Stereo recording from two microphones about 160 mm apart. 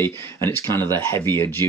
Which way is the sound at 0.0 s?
15° left (ahead or behind).